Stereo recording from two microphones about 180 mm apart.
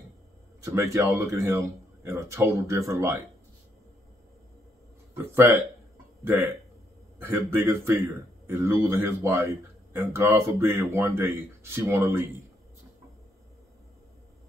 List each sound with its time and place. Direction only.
0.7 s speech: 15° right (ahead or behind)
5.1 s speech: 15° right (ahead or behind)